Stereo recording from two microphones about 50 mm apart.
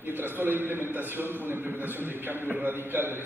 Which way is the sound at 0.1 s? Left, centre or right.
Right.